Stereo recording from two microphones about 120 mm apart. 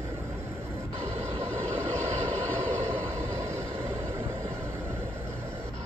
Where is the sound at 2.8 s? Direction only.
20° right (ahead or behind).